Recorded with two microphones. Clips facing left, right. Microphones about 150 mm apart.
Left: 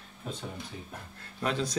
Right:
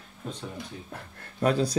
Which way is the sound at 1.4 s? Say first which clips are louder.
Right 7 dB; 40° right (ahead or behind).